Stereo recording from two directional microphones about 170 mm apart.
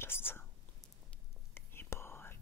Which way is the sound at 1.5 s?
15° left (ahead or behind).